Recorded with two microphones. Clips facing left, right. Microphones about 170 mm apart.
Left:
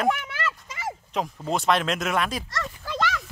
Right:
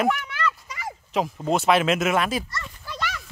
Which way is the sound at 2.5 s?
90° left.